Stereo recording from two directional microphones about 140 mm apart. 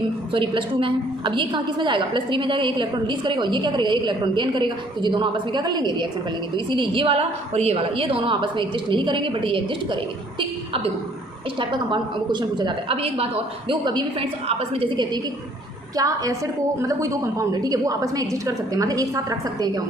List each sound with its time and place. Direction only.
0.3 s a woman's voice: 35° right (ahead or behind)
11.7 s a woman's voice: 35° right (ahead or behind)
16.0 s a woman's voice: 25° right (ahead or behind)